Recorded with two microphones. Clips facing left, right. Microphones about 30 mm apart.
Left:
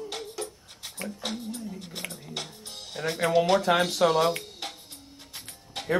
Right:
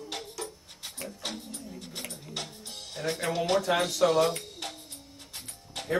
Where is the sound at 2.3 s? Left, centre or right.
Centre.